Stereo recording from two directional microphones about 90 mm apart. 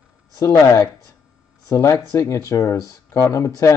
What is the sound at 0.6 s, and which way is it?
Speech, 35° left (ahead or behind).